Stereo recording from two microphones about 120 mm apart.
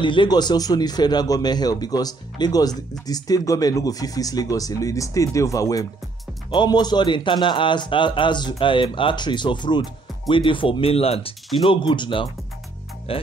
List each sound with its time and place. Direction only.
0.0 s a man's voice: 40° left (ahead or behind)